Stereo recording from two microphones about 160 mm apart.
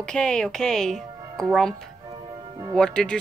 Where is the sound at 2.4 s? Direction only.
35° right (ahead or behind).